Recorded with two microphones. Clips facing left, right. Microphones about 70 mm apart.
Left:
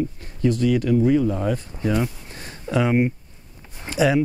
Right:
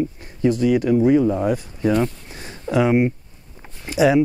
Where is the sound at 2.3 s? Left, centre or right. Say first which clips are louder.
Right 3 dB; centre.